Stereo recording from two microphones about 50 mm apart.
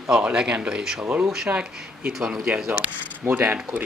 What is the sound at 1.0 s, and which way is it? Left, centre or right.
Speech, right.